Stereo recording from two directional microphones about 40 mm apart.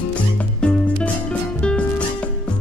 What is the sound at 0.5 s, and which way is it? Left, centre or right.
Music, left.